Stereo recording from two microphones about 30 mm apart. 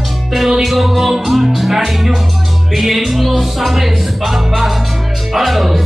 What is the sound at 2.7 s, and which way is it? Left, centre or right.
Speech, centre.